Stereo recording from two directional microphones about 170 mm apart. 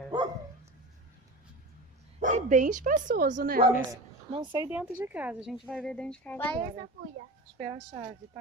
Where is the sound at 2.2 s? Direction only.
45° right (ahead or behind).